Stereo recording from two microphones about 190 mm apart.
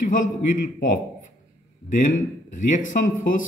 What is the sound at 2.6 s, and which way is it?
Speech, 40° left (ahead or behind).